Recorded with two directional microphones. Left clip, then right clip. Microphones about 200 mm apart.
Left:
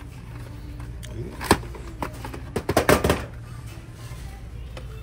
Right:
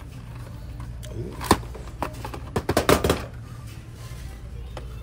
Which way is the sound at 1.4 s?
Centre (ahead or behind).